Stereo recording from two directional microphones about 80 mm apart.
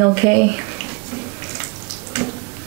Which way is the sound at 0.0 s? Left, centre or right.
Right.